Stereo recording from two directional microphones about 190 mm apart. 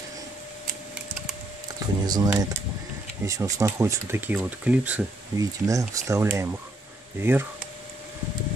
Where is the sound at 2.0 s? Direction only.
20° right (ahead or behind).